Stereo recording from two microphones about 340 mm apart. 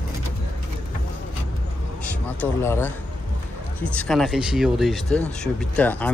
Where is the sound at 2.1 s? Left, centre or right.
Centre.